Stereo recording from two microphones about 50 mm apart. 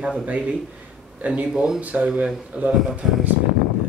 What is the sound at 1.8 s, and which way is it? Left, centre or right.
Speech, right.